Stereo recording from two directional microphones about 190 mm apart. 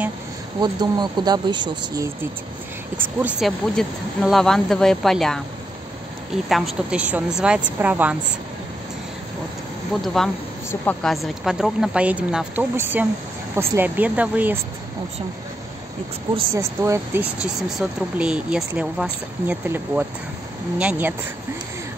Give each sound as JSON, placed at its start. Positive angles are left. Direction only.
{"t": 0.6, "sound": "speech", "side_deg": -25}
{"t": 3.0, "sound": "speech", "side_deg": -10}
{"t": 6.5, "sound": "speech", "side_deg": -5}
{"t": 10.0, "sound": "speech", "side_deg": 0}
{"t": 16.5, "sound": "speech", "side_deg": -15}